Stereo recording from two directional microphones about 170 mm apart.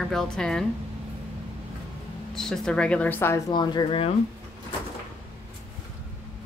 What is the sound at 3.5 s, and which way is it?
Speech, 25° left (ahead or behind).